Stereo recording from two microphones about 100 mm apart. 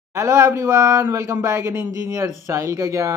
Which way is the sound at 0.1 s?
30° right (ahead or behind).